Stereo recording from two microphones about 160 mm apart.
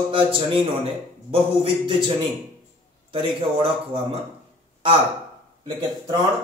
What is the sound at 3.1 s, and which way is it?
A man's voice, 30° right (ahead or behind).